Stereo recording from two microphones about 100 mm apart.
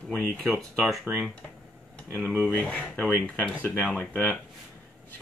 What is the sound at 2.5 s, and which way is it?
Speech, 15° left (ahead or behind).